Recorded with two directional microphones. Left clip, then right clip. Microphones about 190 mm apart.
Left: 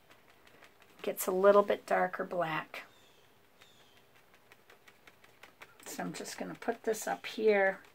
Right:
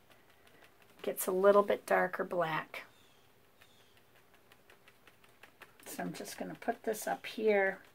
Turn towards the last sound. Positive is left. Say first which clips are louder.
# left 2 dB
turn(degrees=0)  # may be behind; listen again after turning